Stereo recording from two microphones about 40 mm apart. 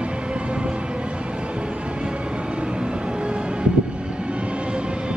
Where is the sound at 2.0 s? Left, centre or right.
Right.